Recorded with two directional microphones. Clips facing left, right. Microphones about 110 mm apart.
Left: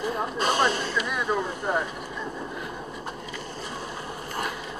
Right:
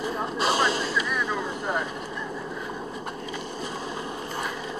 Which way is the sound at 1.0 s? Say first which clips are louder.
Left 1 dB; 20° left (ahead or behind).